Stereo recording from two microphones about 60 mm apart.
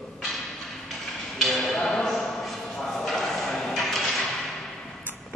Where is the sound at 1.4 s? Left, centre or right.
Centre.